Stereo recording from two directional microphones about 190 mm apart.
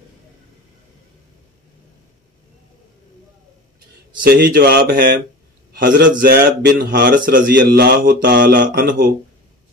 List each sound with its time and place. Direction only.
4.2 s a man's voice: 55° right (ahead or behind)